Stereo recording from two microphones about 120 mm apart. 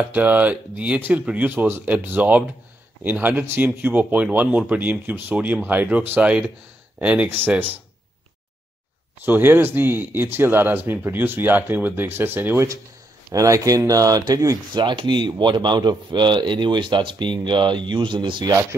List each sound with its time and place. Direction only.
0.1 s speech: 15° right (ahead or behind)
9.2 s speech: 15° right (ahead or behind)
14.7 s a man's voice: 40° right (ahead or behind)
18.5 s speech: 25° right (ahead or behind)